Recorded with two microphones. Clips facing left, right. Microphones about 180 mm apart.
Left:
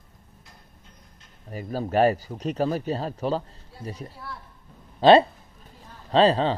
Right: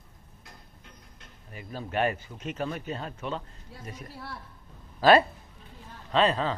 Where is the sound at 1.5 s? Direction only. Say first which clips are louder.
Left 8 dB; 40° left (ahead or behind).